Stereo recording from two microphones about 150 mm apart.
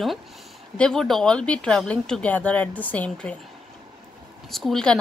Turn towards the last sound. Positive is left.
turn(degrees=5)  # may be behind; listen again after turning